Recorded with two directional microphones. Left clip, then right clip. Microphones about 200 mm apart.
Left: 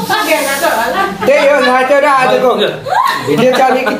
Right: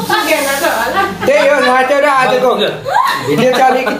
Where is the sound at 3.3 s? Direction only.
Centre (ahead or behind).